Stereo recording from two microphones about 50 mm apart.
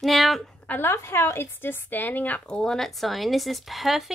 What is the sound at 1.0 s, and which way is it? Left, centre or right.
Speech, left.